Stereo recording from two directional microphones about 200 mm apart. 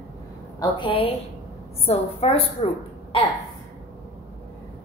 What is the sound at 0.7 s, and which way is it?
A woman's voice, 25° left (ahead or behind).